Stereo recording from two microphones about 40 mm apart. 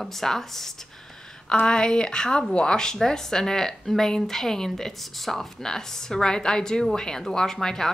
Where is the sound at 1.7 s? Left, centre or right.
Left.